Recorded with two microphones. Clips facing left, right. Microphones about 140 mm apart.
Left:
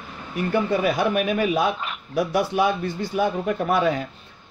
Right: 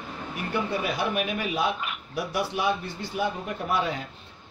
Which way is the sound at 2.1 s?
45° left (ahead or behind).